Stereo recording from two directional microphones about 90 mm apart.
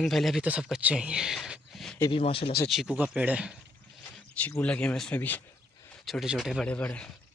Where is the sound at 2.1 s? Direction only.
90° left.